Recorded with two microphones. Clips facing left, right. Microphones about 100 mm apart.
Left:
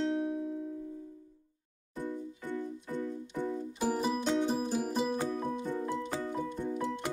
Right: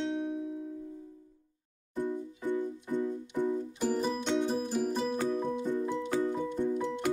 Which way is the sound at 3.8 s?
5° left (ahead or behind).